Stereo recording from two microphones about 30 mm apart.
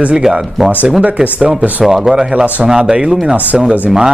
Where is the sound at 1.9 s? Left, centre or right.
Centre.